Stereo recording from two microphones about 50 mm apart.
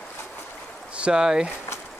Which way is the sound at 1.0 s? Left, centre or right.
Centre.